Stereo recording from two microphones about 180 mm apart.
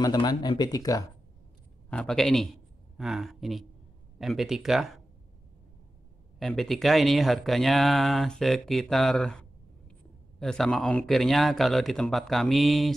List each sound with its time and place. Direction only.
0.0 s speech: 20° left (ahead or behind)
1.9 s speech: 5° left (ahead or behind)
6.4 s speech: centre (ahead or behind)